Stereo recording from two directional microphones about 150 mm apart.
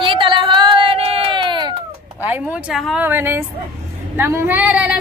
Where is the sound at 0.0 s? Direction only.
35° right (ahead or behind).